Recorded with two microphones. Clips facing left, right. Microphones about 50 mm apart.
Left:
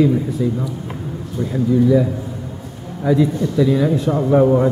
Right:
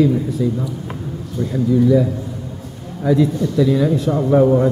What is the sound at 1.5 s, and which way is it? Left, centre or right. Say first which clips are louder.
A man's voice: even; centre.